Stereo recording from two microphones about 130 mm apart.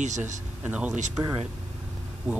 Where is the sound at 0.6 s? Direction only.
10° right (ahead or behind).